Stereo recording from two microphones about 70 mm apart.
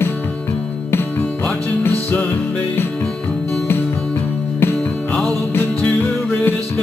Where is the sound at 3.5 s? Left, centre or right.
Left.